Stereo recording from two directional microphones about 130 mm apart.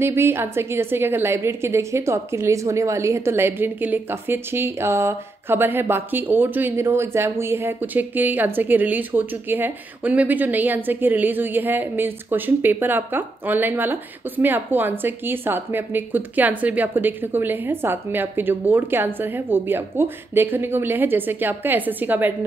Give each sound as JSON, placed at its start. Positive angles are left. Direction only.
{"t": 0.0, "sound": "a woman's voice", "side_deg": -20}